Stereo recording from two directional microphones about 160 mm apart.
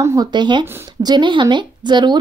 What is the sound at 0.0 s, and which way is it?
Speech, 20° right (ahead or behind).